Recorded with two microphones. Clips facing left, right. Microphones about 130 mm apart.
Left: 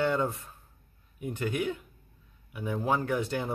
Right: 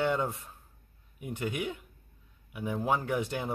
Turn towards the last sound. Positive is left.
turn(degrees=-15)  # may be behind; listen again after turning